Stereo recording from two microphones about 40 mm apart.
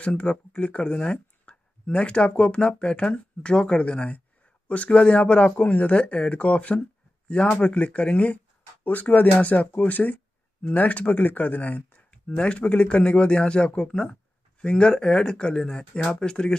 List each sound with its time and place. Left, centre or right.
0.0 s speech: left
4.6 s speech: left
8.8 s speech: left